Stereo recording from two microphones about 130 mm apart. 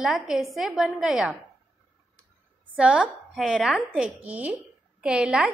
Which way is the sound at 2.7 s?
10° right (ahead or behind).